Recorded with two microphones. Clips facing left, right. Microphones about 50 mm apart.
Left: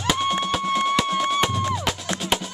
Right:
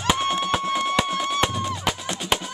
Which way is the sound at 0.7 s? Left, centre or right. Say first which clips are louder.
Left 2 dB; centre.